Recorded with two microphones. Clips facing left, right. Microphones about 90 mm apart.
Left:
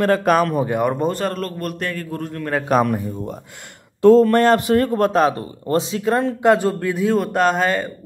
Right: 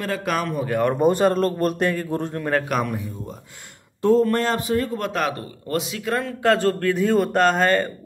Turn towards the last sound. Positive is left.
turn(degrees=5)  # may be behind; listen again after turning